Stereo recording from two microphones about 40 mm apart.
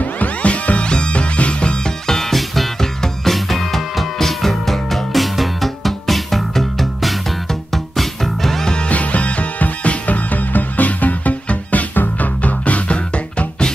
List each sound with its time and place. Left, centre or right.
0.0 s music: left
2.0 s music: centre
8.6 s music: left
12.4 s music: left